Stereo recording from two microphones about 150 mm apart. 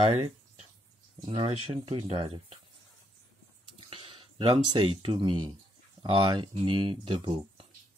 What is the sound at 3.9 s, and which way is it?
Speech, 35° right (ahead or behind).